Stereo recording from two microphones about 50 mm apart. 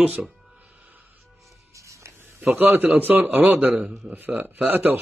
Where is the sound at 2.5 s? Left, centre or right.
Right.